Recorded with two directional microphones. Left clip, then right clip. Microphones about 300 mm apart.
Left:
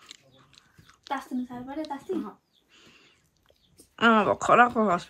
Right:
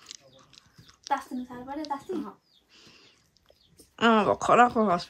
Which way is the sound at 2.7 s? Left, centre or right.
Centre.